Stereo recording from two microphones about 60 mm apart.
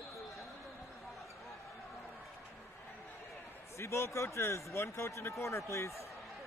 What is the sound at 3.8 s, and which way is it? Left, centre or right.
Speech, left.